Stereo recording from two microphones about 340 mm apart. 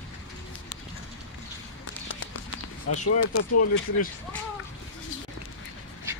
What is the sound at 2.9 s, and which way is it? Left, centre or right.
Speech, left.